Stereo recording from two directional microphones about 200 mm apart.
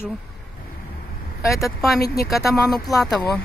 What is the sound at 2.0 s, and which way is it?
Speech, 50° left (ahead or behind).